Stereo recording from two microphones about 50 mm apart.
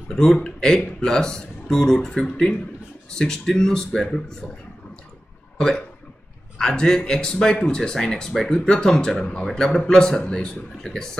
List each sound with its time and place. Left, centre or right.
0.1 s a man's voice: centre
5.6 s a man's voice: centre
9.5 s a man's voice: centre